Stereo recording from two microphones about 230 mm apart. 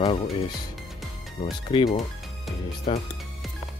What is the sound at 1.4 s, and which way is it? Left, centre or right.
Speech, left.